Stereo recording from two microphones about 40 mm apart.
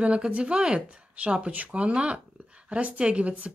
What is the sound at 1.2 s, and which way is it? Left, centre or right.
Speech, right.